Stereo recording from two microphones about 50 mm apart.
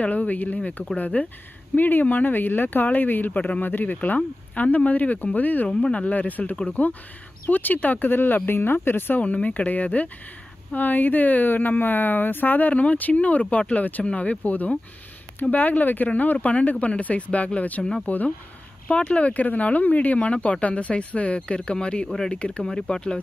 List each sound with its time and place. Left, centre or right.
0.0 s a woman's voice: left
5.7 s a woman's voice: left
9.2 s a woman's voice: left